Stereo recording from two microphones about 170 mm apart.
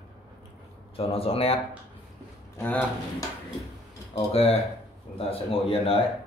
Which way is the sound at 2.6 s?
10° left (ahead or behind).